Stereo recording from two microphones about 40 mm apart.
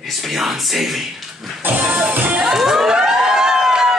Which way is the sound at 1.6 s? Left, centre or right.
Right.